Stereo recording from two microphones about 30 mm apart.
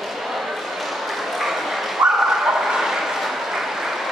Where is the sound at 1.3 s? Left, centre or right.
Centre.